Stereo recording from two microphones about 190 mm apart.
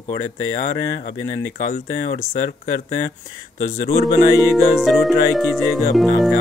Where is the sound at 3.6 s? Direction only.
35° left (ahead or behind).